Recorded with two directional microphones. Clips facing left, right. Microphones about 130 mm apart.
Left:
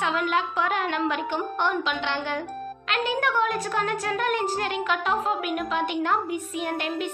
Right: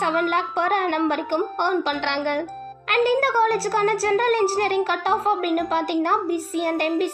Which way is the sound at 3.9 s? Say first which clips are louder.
Right 6 dB; 35° right (ahead or behind).